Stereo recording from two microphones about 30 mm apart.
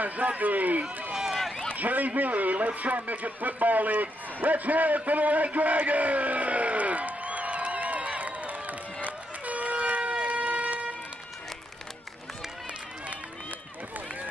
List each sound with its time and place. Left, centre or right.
0.0 s a man's voice: right
1.1 s run: centre
1.8 s speech: right
9.0 s vehicle: right
13.0 s run: right